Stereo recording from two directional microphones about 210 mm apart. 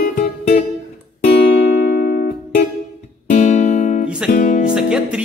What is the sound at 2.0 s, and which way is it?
Music, 50° left (ahead or behind).